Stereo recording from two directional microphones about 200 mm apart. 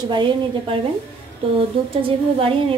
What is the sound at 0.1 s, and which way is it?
Speech, 25° right (ahead or behind).